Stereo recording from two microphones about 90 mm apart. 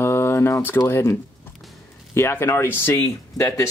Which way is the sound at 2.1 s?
25° left (ahead or behind).